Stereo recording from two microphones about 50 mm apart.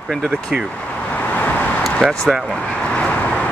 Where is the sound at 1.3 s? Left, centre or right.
Left.